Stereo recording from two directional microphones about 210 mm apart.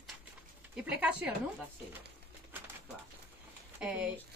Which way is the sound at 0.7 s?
5° right (ahead or behind).